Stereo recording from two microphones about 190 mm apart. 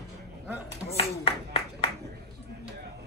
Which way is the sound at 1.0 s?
30° left (ahead or behind).